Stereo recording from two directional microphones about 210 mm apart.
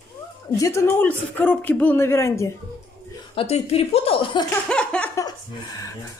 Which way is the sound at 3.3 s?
25° left (ahead or behind).